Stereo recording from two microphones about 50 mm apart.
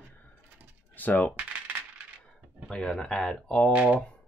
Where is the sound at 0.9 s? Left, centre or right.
Left.